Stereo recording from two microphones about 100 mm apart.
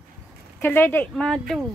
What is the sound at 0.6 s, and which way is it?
Speech, 20° left (ahead or behind).